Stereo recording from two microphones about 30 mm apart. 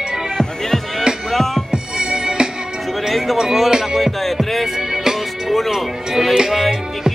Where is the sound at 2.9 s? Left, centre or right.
Centre.